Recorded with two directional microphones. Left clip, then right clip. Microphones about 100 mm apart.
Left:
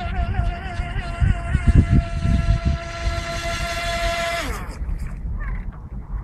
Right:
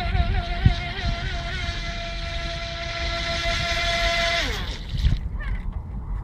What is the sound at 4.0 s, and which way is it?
Vehicle, 65° right (ahead or behind).